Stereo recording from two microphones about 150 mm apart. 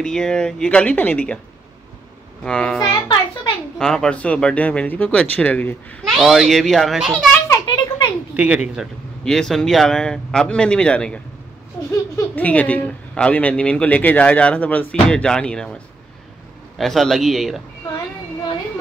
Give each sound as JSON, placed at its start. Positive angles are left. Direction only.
{"t": 0.0, "sound": "speech", "side_deg": 5}
{"t": 2.4, "sound": "speech", "side_deg": 5}
{"t": 2.9, "sound": "music", "side_deg": 30}
{"t": 3.7, "sound": "speech", "side_deg": 5}
{"t": 6.1, "sound": "speech", "side_deg": 0}
{"t": 7.4, "sound": "a sound", "side_deg": 20}
{"t": 8.4, "sound": "speech", "side_deg": -10}
{"t": 9.2, "sound": "speech", "side_deg": 5}